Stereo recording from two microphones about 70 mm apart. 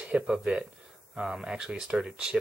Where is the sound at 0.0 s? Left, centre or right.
Centre.